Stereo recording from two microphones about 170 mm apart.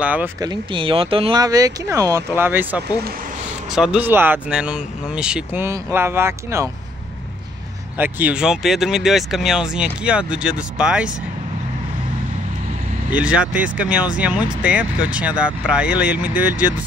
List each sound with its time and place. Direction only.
0.0 s speech: 10° right (ahead or behind)
0.4 s speech: 25° right (ahead or behind)
8.0 s speech: 10° right (ahead or behind)
13.1 s speech: 5° right (ahead or behind)